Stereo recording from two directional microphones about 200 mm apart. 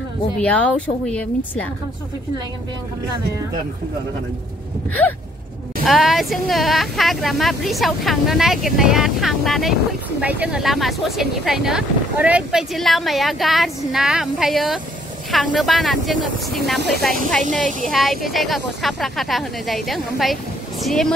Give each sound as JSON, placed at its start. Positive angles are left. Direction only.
{"t": 0.4, "sound": "speech", "side_deg": 5}
{"t": 5.9, "sound": "speech", "side_deg": 0}
{"t": 17.4, "sound": "speech", "side_deg": -40}
{"t": 17.8, "sound": "speech", "side_deg": 0}